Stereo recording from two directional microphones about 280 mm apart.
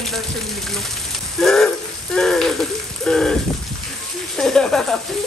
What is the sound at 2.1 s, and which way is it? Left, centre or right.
Speech, centre.